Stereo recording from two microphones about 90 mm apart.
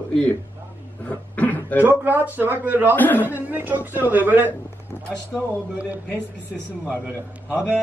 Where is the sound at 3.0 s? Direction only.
20° left (ahead or behind).